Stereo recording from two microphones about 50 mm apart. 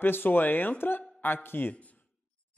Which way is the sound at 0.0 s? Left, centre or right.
Left.